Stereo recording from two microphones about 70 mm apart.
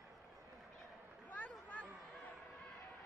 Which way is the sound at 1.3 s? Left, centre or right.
Left.